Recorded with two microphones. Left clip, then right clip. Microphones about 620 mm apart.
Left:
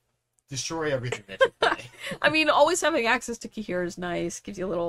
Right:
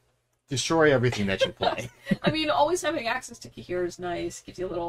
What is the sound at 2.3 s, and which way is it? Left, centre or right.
Speech, left.